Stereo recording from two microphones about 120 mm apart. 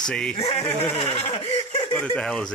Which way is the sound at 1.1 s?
60° left (ahead or behind).